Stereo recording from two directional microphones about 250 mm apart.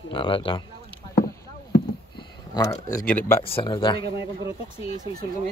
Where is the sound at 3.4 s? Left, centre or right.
Left.